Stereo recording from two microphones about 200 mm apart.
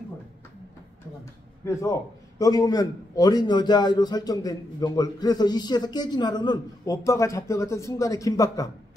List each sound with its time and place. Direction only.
1.6 s a man's voice: 15° left (ahead or behind)